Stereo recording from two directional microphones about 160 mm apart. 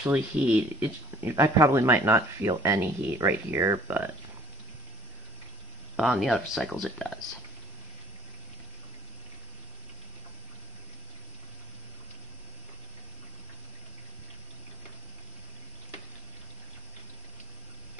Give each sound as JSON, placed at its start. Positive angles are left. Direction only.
{"t": 0.0, "sound": "speech", "side_deg": -5}
{"t": 5.9, "sound": "speech", "side_deg": 0}